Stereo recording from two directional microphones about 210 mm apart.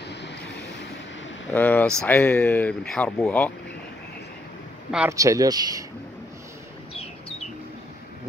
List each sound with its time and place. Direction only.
1.5 s speech: 10° left (ahead or behind)
5.1 s a man's voice: 15° right (ahead or behind)